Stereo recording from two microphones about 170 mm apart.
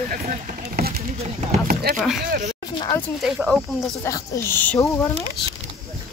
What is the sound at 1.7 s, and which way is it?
Speech, 60° right (ahead or behind).